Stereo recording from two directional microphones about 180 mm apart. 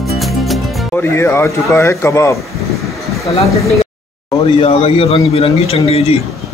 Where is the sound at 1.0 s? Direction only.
15° left (ahead or behind).